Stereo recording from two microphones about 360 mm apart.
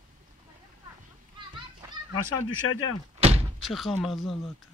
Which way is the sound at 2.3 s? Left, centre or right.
Left.